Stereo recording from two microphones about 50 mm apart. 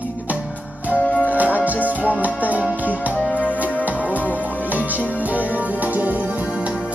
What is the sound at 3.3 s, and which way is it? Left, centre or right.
Music, left.